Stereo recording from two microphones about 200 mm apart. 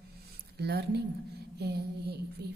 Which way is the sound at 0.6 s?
55° right (ahead or behind).